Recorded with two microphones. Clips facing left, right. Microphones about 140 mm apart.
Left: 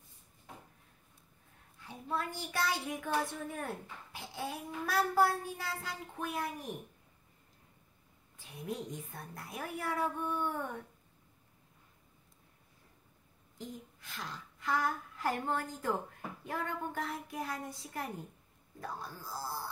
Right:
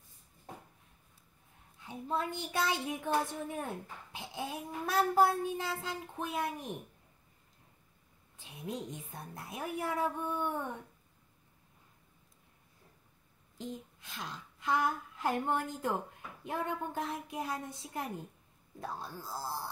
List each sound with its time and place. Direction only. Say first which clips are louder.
1.8 s a woman's voice: right 2 dB; 20° right (ahead or behind)
4.1 s a sound: right 1 dB; 20° right (ahead or behind)
4.8 s a woman's voice: right 2 dB; 20° right (ahead or behind)
8.4 s a woman's voice: even; 20° right (ahead or behind)
13.6 s a woman's voice: right 3 dB; 20° right (ahead or behind)